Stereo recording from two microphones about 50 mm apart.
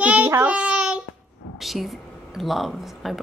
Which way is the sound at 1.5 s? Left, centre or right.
Centre.